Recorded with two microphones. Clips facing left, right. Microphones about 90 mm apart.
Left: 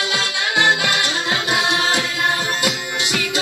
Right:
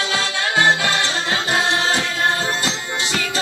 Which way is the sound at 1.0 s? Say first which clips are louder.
Even; 15° left (ahead or behind).